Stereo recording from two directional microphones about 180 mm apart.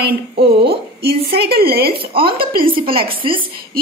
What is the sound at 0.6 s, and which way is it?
A woman's voice, 60° right (ahead or behind).